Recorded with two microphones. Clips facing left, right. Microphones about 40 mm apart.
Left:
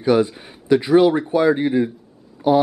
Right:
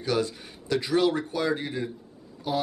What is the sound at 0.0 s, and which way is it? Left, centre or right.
Speech, left.